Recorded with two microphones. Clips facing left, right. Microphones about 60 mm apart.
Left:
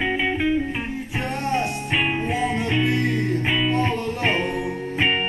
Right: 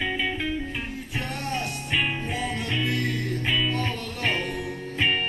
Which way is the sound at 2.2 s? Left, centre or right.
Left.